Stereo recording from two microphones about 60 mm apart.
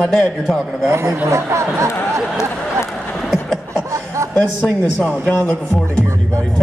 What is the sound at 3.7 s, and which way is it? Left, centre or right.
Chuckle, right.